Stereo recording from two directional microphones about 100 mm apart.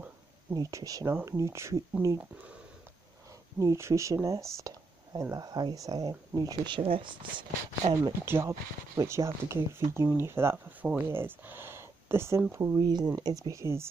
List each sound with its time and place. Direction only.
0.6 s speech: 35° right (ahead or behind)
3.5 s speech: 30° right (ahead or behind)
6.7 s speech: 60° right (ahead or behind)
8.3 s speech: 25° right (ahead or behind)
12.5 s speech: 35° right (ahead or behind)